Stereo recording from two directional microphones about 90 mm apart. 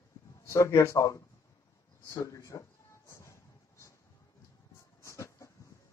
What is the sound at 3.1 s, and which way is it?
Train, 35° left (ahead or behind).